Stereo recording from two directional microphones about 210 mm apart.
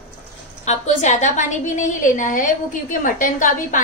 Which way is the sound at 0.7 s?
35° left (ahead or behind).